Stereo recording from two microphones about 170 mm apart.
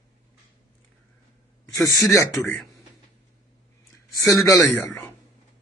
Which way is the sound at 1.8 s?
20° left (ahead or behind).